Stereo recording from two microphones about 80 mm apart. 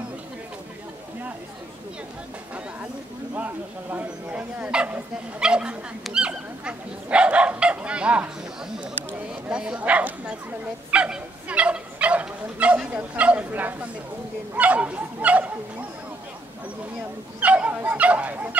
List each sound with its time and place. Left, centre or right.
3.3 s speech: right
9.3 s speech: centre
10.9 s bow-wow: centre
14.5 s speech: centre
17.4 s speech: centre